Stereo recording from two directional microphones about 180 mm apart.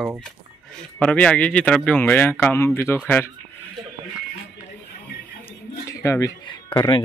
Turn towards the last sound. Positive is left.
turn(degrees=25)  # may be behind; listen again after turning